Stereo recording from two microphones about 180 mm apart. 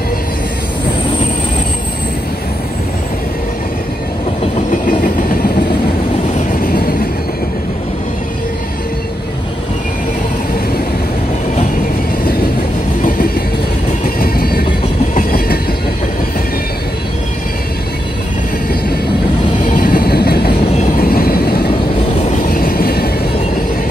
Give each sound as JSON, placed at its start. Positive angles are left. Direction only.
{"t": 6.3, "sound": "vehicle", "side_deg": 50}
{"t": 14.0, "sound": "train", "side_deg": 55}
{"t": 19.6, "sound": "vehicle", "side_deg": 50}
{"t": 22.5, "sound": "train", "side_deg": 55}